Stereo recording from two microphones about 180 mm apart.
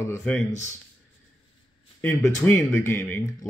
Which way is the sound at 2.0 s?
10° left (ahead or behind).